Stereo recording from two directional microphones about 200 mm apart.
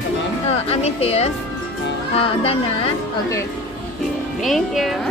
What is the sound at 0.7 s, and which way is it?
Speech, 30° left (ahead or behind).